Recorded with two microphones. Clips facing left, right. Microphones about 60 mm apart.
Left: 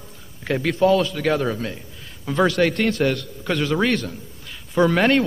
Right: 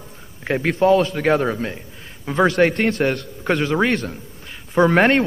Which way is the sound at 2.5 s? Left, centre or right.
Right.